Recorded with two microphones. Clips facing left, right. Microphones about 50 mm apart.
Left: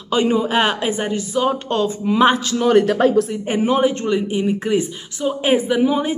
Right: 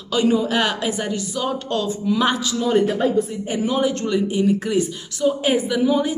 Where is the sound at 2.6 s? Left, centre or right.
Left.